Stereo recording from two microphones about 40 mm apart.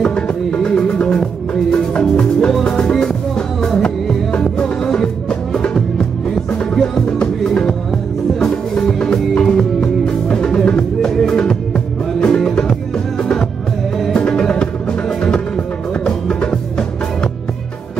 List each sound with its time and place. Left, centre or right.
0.0 s music: left
6.3 s music: centre
14.1 s music: left